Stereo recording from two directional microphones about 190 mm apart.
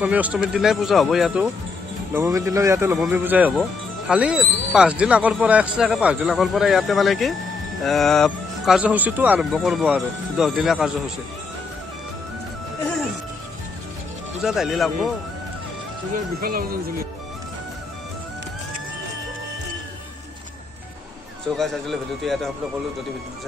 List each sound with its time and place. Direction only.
0.0 s speech: 10° right (ahead or behind)
2.1 s speech: 15° right (ahead or behind)
14.4 s speech: centre (ahead or behind)
16.3 s speech: 50° right (ahead or behind)
21.5 s speech: centre (ahead or behind)